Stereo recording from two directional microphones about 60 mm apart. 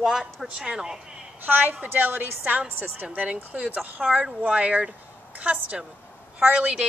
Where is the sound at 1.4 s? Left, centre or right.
Right.